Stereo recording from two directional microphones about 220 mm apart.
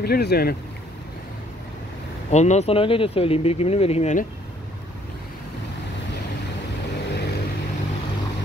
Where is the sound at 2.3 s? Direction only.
30° left (ahead or behind).